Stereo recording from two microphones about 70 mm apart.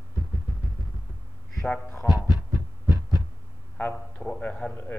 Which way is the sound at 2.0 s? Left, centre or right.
Left.